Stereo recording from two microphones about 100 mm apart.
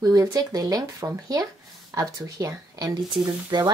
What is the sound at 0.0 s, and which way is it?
Speech, 35° right (ahead or behind).